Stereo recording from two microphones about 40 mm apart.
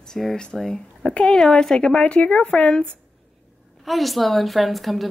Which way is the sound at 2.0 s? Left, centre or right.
Left.